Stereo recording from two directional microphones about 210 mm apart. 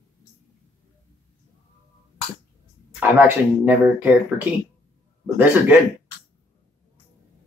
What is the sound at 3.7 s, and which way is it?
Speech, 10° right (ahead or behind).